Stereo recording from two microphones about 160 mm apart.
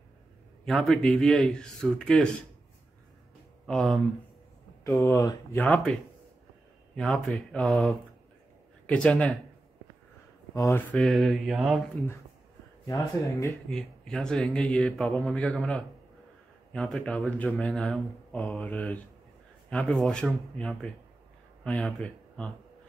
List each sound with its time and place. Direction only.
0.7 s speech: centre (ahead or behind)
3.6 s speech: 5° left (ahead or behind)
5.0 s speech: 20° left (ahead or behind)
7.0 s speech: 5° left (ahead or behind)
10.5 s speech: 20° left (ahead or behind)
10.9 s speech: centre (ahead or behind)
13.3 s speech: 20° left (ahead or behind)
13.7 s speech: 5° left (ahead or behind)